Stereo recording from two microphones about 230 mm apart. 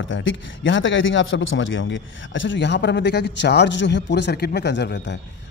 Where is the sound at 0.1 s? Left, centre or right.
Left.